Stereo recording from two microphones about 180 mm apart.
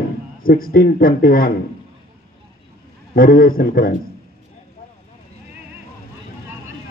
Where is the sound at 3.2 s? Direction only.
55° left (ahead or behind).